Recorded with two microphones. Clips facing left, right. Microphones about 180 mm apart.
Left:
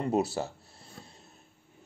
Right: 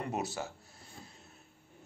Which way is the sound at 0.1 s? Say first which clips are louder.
Left 8 dB; 30° left (ahead or behind).